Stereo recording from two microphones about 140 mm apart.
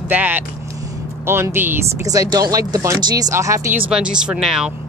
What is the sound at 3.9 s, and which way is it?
Speech, 5° right (ahead or behind).